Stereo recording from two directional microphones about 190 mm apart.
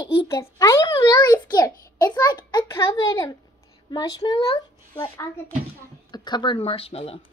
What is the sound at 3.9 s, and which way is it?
Speech, 20° left (ahead or behind).